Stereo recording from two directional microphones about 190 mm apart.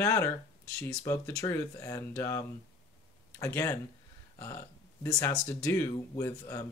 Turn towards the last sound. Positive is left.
turn(degrees=15)  # may be behind; listen again after turning